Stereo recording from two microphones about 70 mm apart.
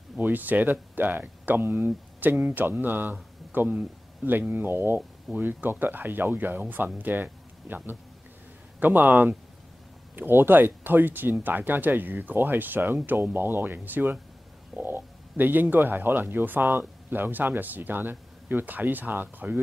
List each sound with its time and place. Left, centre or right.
0.2 s speech: right